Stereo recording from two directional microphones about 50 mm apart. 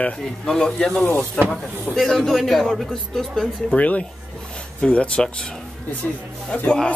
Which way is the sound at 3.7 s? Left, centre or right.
Left.